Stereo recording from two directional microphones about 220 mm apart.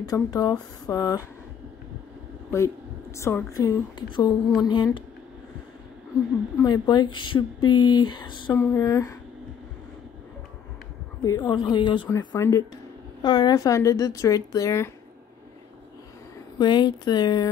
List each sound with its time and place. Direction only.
0.1 s a woman's voice: 15° left (ahead or behind)
3.2 s a woman's voice: 10° left (ahead or behind)
6.6 s a woman's voice: 20° left (ahead or behind)
11.2 s a woman's voice: 15° left (ahead or behind)
16.5 s speech: 20° left (ahead or behind)